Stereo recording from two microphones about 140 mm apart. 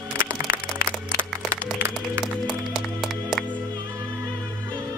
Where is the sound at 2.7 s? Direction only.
Centre (ahead or behind).